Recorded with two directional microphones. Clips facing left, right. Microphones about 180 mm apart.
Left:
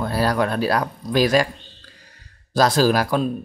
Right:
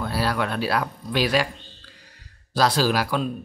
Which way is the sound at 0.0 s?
45° left (ahead or behind).